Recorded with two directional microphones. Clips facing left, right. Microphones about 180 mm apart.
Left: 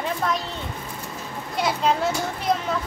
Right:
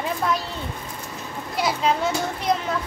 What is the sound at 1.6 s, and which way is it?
Speech, centre (ahead or behind).